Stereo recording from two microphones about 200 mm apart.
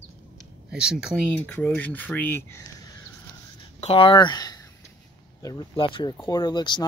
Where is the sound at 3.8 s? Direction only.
30° left (ahead or behind).